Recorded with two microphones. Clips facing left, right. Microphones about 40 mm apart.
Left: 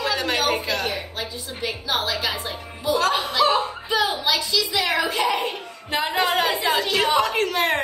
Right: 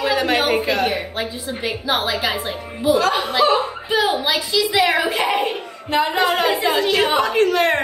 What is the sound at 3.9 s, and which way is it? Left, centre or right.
A woman's voice, right.